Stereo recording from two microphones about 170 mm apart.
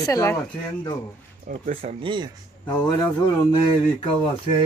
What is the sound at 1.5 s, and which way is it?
Speech, 50° right (ahead or behind).